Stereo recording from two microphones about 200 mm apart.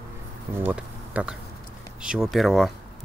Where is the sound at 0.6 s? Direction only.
10° right (ahead or behind).